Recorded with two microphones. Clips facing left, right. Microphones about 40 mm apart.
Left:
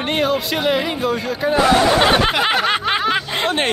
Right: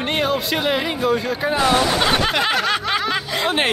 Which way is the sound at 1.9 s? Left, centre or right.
Left.